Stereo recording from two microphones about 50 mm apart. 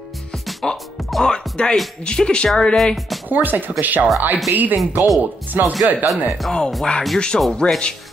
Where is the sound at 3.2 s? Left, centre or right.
Right.